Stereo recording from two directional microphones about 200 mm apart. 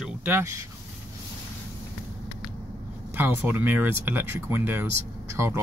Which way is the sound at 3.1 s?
10° right (ahead or behind).